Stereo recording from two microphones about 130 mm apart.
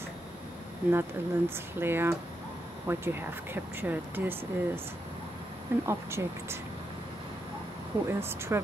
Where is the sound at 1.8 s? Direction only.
15° right (ahead or behind).